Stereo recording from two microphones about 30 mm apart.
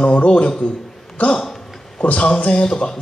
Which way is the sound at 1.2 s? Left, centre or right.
Left.